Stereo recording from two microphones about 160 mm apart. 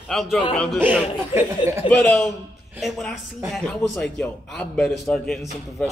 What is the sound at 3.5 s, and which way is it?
A man's voice, centre (ahead or behind).